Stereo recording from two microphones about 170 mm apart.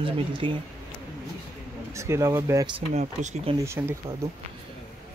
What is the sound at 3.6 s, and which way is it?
Speech, 15° right (ahead or behind).